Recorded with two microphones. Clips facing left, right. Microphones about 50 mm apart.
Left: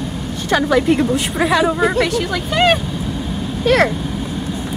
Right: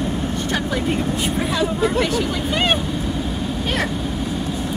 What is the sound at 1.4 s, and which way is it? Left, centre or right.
Speech, left.